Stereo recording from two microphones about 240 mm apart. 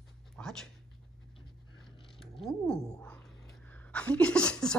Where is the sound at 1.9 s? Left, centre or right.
Left.